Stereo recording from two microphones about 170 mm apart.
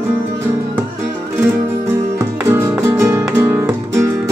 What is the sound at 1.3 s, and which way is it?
Music, 10° right (ahead or behind).